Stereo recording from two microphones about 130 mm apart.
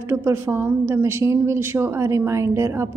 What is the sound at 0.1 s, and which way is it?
A woman's voice, 20° right (ahead or behind).